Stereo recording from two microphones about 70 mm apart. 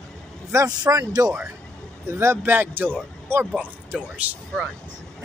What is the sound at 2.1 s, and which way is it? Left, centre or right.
Speech, right.